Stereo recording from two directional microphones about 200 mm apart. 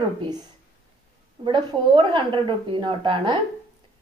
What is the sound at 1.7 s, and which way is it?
A woman's voice, 25° right (ahead or behind).